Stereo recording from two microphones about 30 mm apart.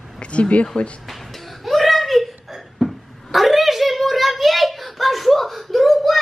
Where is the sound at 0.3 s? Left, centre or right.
Left.